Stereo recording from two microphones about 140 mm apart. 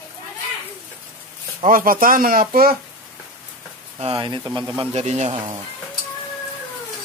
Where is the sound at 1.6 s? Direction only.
85° right.